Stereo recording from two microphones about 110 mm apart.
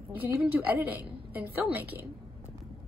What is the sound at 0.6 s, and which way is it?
A woman's voice, 15° right (ahead or behind).